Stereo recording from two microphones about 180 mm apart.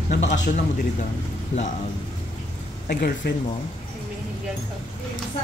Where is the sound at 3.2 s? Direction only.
65° left (ahead or behind).